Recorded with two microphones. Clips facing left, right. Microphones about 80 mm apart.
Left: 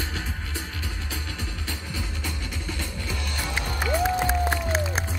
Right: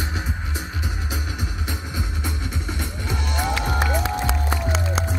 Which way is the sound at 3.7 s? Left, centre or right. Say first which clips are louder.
Right 1 dB; right.